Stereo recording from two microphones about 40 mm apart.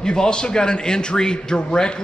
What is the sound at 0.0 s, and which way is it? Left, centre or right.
A man's voice, left.